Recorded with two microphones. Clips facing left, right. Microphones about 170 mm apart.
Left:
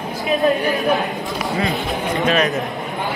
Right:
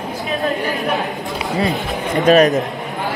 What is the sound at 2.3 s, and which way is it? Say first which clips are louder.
Speech: right 8 dB; 40° right (ahead or behind).